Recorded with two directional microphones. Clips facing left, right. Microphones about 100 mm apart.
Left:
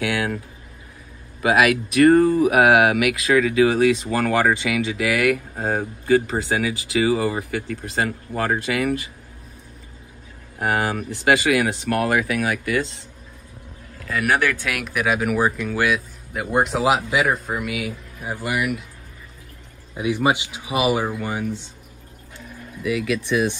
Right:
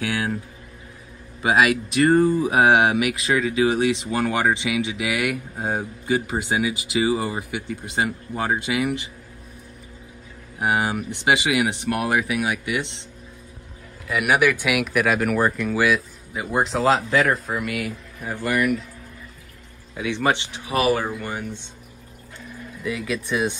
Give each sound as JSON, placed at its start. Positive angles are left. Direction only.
{"t": 0.0, "sound": "a sound", "side_deg": -30}
{"t": 1.4, "sound": "speech", "side_deg": -25}
{"t": 10.6, "sound": "speech", "side_deg": -15}
{"t": 14.0, "sound": "speech", "side_deg": -10}
{"t": 20.0, "sound": "speech", "side_deg": 10}